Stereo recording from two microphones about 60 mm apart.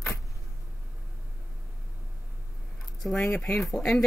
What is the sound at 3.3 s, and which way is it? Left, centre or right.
Speech, left.